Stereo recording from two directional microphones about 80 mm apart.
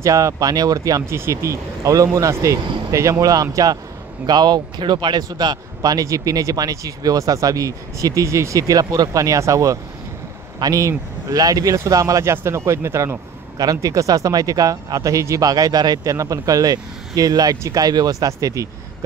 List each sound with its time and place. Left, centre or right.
0.0 s speech: right
1.1 s speech: right
4.3 s speech: right
13.6 s speech: right